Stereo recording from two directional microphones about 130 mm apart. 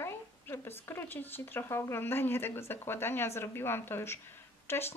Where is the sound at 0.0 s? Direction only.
20° left (ahead or behind).